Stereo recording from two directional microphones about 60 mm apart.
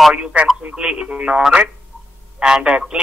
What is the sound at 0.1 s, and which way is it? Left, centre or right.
Speech, centre.